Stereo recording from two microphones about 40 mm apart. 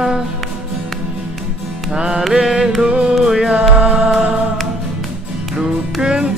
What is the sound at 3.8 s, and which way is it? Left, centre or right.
Music, right.